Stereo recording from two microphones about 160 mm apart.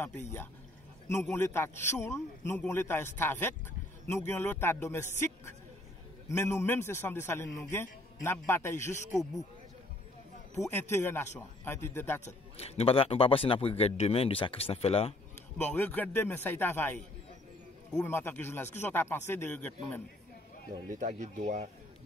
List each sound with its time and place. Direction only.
1.2 s a man's voice: 15° left (ahead or behind)
10.7 s a man's voice: 15° left (ahead or behind)
12.3 s speech: 40° left (ahead or behind)
15.5 s a man's voice: 10° left (ahead or behind)
18.0 s a man's voice: 10° left (ahead or behind)
20.9 s speech: 55° right (ahead or behind)